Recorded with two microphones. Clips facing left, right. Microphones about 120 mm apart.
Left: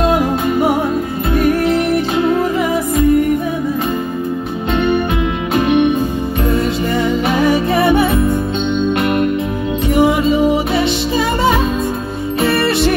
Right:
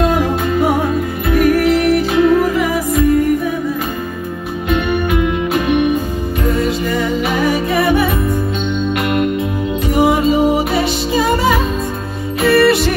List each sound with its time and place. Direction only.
1.3 s music: 30° left (ahead or behind)
4.8 s music: 30° left (ahead or behind)
7.3 s music: 35° left (ahead or behind)
12.4 s music: 30° left (ahead or behind)